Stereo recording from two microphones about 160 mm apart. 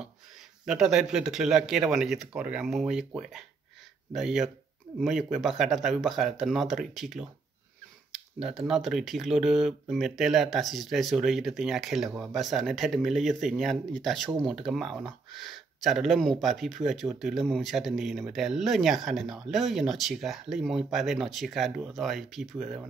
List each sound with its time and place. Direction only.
0.7 s speech: 5° right (ahead or behind)
4.1 s speech: centre (ahead or behind)